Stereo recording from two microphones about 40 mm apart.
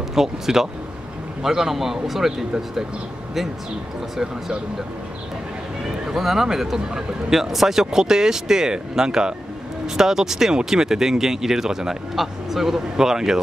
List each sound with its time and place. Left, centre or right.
0.1 s speech: centre
6.0 s speech: centre